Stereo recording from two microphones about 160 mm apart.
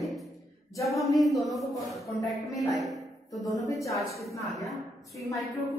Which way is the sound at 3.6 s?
20° left (ahead or behind).